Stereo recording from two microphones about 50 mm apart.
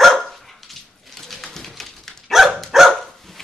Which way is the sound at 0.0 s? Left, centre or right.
Centre.